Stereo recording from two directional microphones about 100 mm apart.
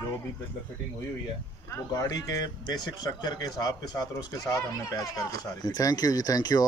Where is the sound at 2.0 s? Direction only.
40° left (ahead or behind).